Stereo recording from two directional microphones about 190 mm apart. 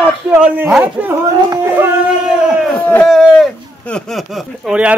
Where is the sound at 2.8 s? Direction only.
5° left (ahead or behind).